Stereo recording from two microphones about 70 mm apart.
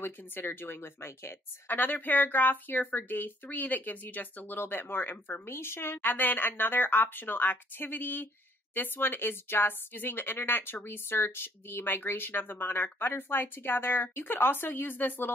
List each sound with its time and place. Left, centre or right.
0.0 s speech: left